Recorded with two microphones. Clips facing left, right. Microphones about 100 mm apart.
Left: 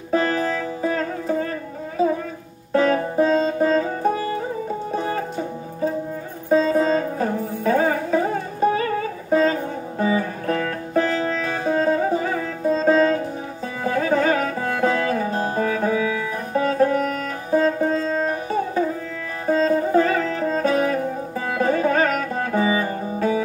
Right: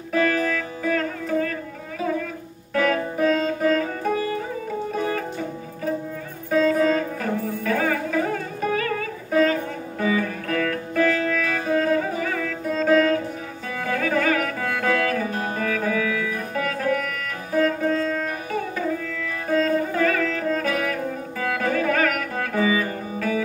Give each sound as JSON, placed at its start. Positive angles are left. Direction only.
{"t": 0.1, "sound": "music", "side_deg": 30}
{"t": 2.7, "sound": "music", "side_deg": 30}
{"t": 6.5, "sound": "music", "side_deg": 30}